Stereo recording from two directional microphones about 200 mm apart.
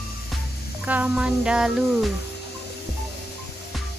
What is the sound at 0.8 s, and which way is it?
Speech, 5° right (ahead or behind).